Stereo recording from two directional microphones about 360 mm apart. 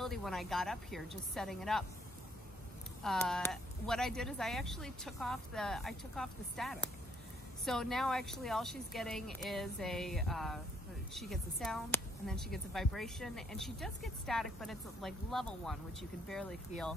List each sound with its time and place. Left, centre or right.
0.0 s a woman's voice: centre
3.0 s a woman's voice: centre